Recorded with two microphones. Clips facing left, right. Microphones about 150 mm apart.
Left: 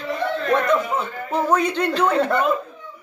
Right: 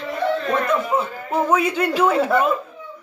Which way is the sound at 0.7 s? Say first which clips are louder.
Even; 5° right (ahead or behind).